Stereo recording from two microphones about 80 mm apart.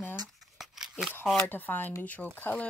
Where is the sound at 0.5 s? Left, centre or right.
Centre.